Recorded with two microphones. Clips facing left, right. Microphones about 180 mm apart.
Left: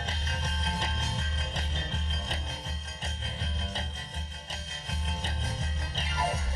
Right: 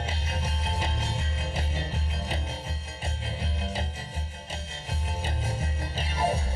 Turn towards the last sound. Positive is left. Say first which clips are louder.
# right 4 dB
turn(degrees=-30)  # may be behind; listen again after turning